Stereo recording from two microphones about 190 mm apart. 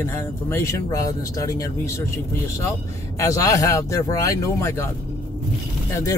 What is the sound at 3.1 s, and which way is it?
Speech, 15° left (ahead or behind).